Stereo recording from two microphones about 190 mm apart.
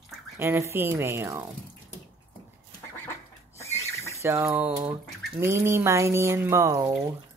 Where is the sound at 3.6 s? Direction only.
15° left (ahead or behind).